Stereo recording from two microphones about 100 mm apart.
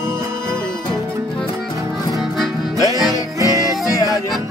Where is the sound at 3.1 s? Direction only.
35° left (ahead or behind).